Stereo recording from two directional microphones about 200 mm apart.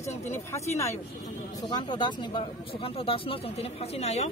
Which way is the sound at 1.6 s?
20° left (ahead or behind).